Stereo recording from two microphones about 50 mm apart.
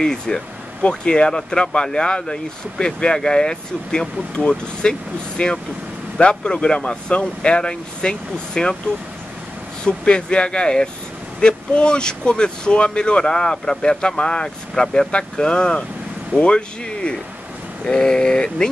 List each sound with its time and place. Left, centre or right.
0.0 s speech: centre
9.8 s speech: centre